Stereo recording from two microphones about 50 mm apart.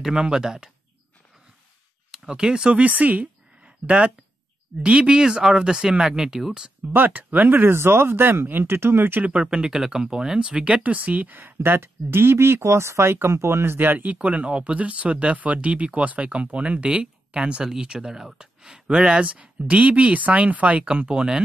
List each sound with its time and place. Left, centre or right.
0.0 s speech: centre
2.0 s speech: centre
2.8 s speech: right
3.6 s a sound: right
4.8 s speech: right
6.9 s speech: right
9.2 s speech: centre
11.3 s speech: right
13.9 s speech: right